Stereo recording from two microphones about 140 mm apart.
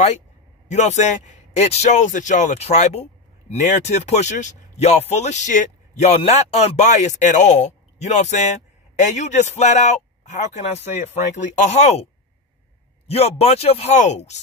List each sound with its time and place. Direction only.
0.7 s a man's voice: 55° left (ahead or behind)
13.1 s a man's voice: 45° left (ahead or behind)